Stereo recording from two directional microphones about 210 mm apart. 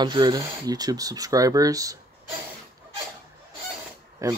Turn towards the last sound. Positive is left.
turn(degrees=-15)  # may be behind; listen again after turning